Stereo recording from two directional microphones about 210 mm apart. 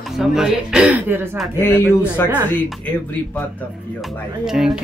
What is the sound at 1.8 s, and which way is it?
Speech, 10° left (ahead or behind).